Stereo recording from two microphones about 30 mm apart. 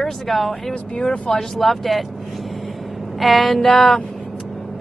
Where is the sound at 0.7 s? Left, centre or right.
Left.